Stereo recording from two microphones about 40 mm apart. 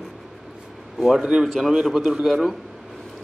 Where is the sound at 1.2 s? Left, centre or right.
Right.